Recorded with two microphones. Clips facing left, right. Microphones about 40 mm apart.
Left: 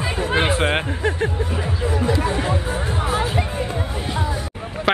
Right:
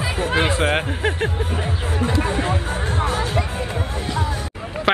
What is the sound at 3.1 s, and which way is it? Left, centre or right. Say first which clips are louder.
Music: left 1 dB; centre.